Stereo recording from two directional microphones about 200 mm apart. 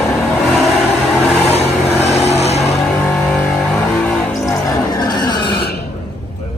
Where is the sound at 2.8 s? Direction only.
5° left (ahead or behind).